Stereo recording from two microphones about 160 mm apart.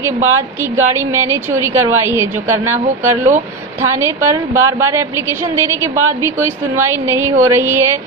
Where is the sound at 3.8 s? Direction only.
15° right (ahead or behind).